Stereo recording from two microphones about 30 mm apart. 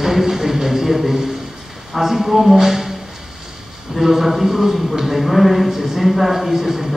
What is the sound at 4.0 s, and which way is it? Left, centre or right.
Speech, centre.